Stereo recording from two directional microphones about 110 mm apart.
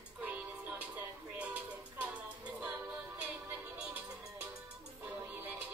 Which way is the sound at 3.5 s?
15° right (ahead or behind).